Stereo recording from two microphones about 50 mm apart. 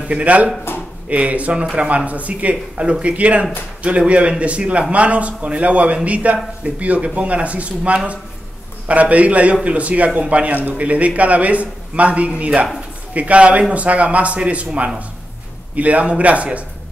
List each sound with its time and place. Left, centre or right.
0.1 s speech: right
0.7 s a sound: left
1.0 s speech: right